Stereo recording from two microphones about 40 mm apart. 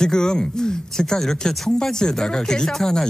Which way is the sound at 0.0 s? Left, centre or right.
Centre.